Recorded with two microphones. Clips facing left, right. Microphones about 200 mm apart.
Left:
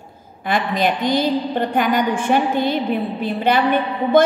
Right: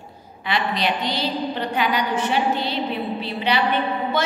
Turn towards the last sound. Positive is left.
turn(degrees=50)  # may be behind; listen again after turning